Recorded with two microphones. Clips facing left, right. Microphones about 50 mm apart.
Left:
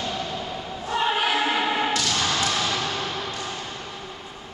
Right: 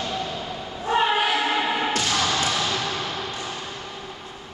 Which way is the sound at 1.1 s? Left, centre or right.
Centre.